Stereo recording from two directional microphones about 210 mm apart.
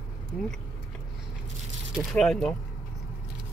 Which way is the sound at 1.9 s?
Centre (ahead or behind).